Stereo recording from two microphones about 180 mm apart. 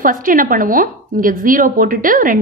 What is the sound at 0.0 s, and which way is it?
A woman's voice, 50° right (ahead or behind).